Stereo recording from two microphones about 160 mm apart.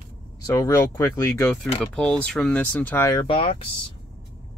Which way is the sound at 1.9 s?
5° left (ahead or behind).